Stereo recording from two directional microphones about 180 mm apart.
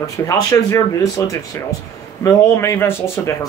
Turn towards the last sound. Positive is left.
turn(degrees=15)  # may be behind; listen again after turning